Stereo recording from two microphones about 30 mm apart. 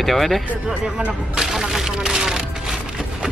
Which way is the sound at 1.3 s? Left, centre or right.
Centre.